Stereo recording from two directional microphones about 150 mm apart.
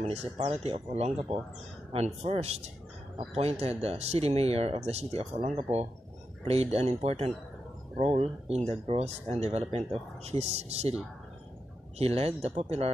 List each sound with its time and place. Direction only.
0.0 s speech: 45° right (ahead or behind)
12.0 s speech: 45° right (ahead or behind)